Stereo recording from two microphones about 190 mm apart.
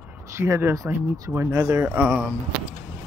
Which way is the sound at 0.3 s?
15° right (ahead or behind).